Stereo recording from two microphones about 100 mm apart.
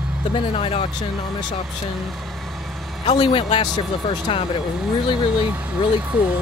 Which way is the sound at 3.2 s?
65° left (ahead or behind).